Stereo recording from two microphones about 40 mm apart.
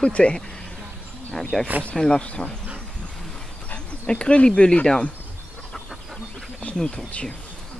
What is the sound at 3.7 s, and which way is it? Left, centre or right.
Dog, left.